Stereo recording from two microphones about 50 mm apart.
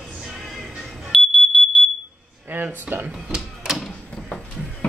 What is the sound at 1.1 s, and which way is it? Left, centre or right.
Smoke detector, centre.